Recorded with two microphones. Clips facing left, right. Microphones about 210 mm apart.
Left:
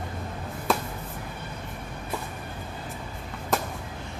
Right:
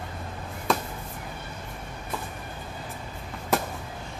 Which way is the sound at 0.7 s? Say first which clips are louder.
Even; centre (ahead or behind).